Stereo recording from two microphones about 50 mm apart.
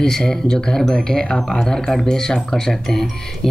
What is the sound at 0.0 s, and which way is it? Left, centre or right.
Speech, centre.